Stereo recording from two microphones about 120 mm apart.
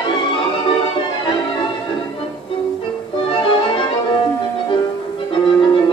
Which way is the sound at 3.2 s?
45° left (ahead or behind).